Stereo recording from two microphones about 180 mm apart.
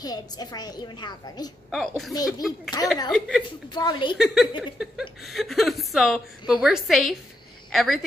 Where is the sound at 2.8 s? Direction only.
20° left (ahead or behind).